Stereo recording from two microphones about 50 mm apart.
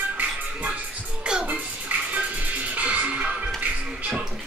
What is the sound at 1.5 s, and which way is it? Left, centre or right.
Music, right.